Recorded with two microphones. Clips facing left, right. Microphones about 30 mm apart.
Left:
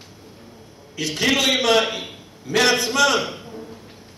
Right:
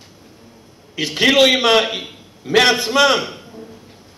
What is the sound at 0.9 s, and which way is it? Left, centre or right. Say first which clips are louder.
A man's voice: right 6 dB; right.